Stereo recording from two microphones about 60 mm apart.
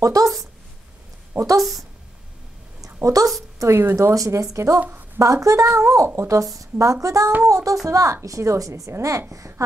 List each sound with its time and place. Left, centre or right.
0.0 s speech: right
1.3 s speech: right
3.0 s speech: right
3.7 s speech: right
4.1 s speech: right